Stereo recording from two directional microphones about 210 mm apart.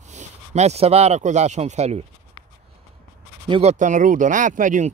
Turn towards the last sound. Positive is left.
turn(degrees=-35)  # may be behind; listen again after turning